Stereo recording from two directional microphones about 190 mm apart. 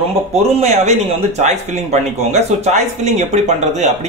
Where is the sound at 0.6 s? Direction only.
35° right (ahead or behind).